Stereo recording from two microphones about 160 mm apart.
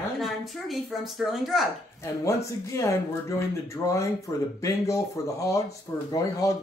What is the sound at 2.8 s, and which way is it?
Speech, 15° left (ahead or behind).